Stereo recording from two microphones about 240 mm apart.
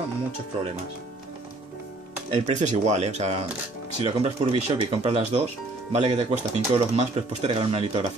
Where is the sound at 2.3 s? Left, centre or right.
Right.